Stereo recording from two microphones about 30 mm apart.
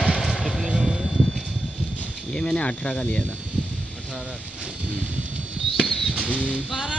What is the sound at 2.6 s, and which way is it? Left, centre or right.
Speech, left.